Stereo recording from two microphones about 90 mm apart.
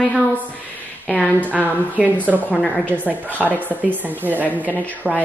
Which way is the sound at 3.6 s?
20° right (ahead or behind).